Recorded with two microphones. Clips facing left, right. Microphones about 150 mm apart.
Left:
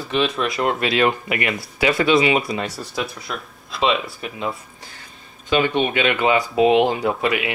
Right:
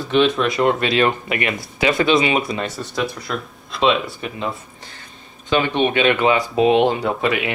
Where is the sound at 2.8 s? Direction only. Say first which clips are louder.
Right 3 dB; centre (ahead or behind).